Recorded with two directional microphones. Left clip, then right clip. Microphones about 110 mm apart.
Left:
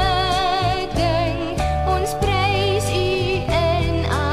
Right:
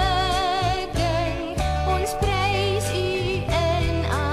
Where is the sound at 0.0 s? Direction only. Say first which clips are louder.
Left 3 dB; 5° left (ahead or behind).